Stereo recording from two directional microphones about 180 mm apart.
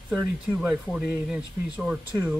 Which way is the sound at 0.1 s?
10° right (ahead or behind).